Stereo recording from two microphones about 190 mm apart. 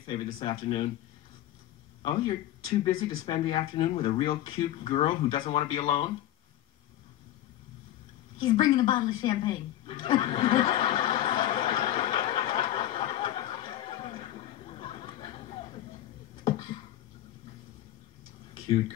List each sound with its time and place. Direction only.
0.0 s speech: 25° left (ahead or behind)
2.0 s speech: 25° left (ahead or behind)
8.4 s a sound: 25° left (ahead or behind)